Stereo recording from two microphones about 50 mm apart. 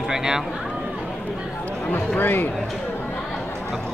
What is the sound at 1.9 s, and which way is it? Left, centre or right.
Speech, left.